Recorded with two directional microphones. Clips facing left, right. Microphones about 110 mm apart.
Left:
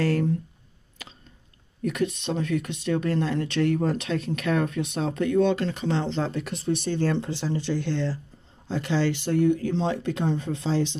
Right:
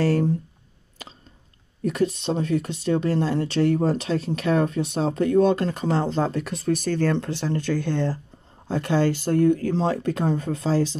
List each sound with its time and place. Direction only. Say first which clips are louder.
0.0 s speech: right 3 dB; 35° right (ahead or behind)
1.8 s speech: right 3 dB; 35° right (ahead or behind)